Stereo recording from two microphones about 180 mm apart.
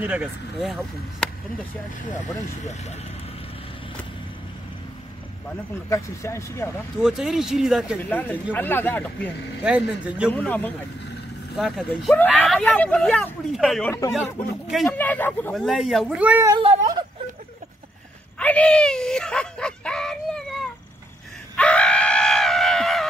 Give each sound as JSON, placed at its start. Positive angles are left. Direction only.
{"t": 0.0, "sound": "speech", "side_deg": -10}
{"t": 5.9, "sound": "speech", "side_deg": 15}
{"t": 7.0, "sound": "speech", "side_deg": -5}
{"t": 8.0, "sound": "speech", "side_deg": 10}
{"t": 9.6, "sound": "speech", "side_deg": -5}
{"t": 10.3, "sound": "speech", "side_deg": 10}
{"t": 15.5, "sound": "speech", "side_deg": 0}
{"t": 16.5, "sound": "a sound", "side_deg": -25}
{"t": 18.4, "sound": "a sound", "side_deg": 5}
{"t": 21.5, "sound": "screaming", "side_deg": 5}